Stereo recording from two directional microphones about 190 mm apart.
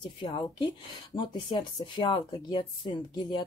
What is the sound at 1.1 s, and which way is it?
Speech, 25° left (ahead or behind).